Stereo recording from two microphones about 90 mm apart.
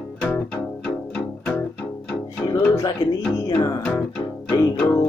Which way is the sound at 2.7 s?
40° left (ahead or behind).